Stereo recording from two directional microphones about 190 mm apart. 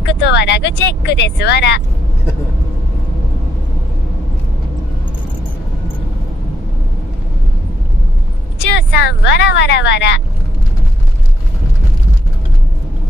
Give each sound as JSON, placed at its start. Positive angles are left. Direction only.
{"t": 0.0, "sound": "speech", "side_deg": 65}
{"t": 8.7, "sound": "speech", "side_deg": 65}